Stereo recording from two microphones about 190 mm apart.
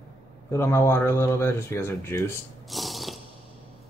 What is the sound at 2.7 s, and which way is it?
Ratchet, centre (ahead or behind).